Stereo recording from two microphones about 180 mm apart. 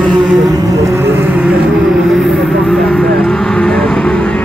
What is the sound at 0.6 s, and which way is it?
Boat, 20° right (ahead or behind).